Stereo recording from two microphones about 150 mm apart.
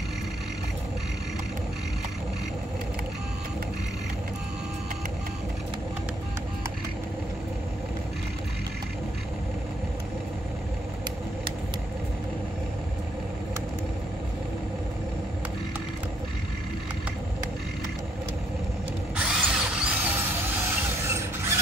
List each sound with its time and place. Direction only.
19.1 s drill: 5° right (ahead or behind)
21.0 s mechanisms: 20° right (ahead or behind)